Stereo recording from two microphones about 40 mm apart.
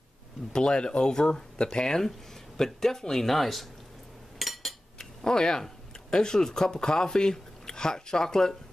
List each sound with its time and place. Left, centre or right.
0.5 s speech: left; by 3.6 s centre
4.4 s a sound: centre
4.9 s speech: centre